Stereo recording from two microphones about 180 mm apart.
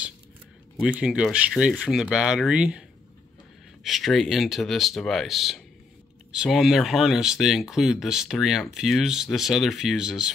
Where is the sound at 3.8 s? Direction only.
Centre (ahead or behind).